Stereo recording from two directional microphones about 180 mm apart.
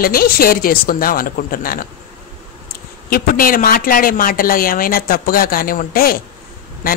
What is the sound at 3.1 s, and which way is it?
Speech, 55° left (ahead or behind).